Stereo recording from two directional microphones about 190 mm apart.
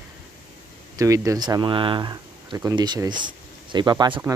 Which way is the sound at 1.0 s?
15° right (ahead or behind).